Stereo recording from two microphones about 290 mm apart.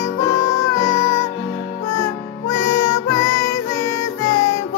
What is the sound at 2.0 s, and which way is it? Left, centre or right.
Music, centre.